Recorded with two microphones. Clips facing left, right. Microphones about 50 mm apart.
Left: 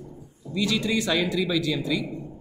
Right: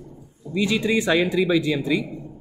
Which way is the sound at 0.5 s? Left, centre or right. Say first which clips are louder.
Right 4 dB; right.